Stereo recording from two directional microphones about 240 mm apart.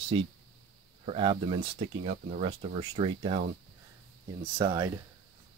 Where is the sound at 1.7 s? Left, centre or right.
Right.